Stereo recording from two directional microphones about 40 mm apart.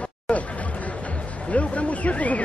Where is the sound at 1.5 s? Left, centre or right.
Left.